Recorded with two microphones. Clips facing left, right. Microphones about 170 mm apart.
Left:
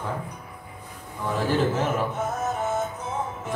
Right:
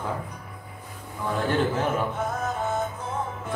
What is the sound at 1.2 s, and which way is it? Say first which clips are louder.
Speech: left 1 dB; centre (ahead or behind).